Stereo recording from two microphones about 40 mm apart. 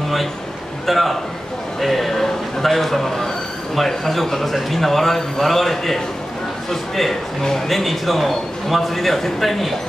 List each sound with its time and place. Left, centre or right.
0.8 s a man's voice: centre